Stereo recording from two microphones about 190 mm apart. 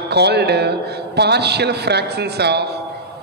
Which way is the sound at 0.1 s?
60° right (ahead or behind).